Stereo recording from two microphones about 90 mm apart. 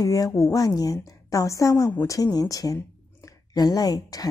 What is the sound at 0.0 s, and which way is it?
Speech, 40° left (ahead or behind).